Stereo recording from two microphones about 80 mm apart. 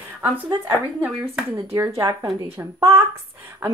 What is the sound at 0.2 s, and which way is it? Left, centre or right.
Speech, right.